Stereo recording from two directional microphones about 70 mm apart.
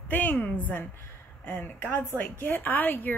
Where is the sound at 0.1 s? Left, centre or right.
Left.